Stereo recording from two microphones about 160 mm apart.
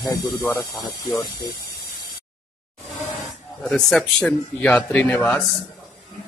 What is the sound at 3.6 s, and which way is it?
Speech, centre (ahead or behind).